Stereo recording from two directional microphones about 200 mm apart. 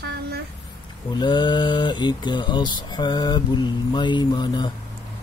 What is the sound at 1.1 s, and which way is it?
Speech, 20° left (ahead or behind).